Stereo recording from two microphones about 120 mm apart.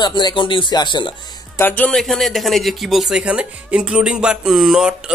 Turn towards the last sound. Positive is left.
turn(degrees=-5)  # may be behind; listen again after turning